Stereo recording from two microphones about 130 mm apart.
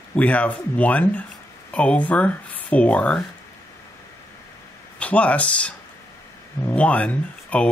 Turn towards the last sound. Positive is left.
turn(degrees=10)  # may be behind; listen again after turning